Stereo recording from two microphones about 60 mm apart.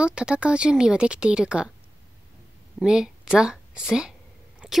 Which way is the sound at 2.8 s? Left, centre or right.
Centre.